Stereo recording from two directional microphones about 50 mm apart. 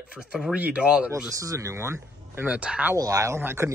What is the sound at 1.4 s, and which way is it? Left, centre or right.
Speech, right.